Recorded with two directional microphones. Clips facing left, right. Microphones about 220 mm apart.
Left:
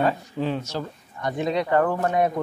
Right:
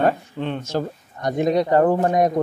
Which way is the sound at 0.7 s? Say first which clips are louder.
Right 6 dB; 45° right (ahead or behind).